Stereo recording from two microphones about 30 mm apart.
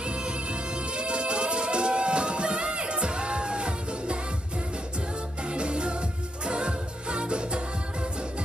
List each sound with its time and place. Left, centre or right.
0.0 s music: right
5.5 s music: right